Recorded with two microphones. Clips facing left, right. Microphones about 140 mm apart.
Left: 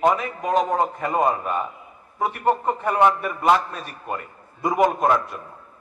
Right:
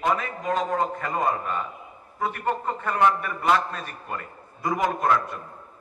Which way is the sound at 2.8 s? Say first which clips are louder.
Left 3 dB; 20° left (ahead or behind).